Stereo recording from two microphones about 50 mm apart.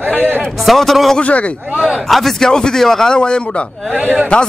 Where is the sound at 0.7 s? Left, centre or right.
Centre.